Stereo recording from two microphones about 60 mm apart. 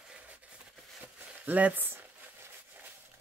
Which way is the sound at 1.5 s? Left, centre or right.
Right.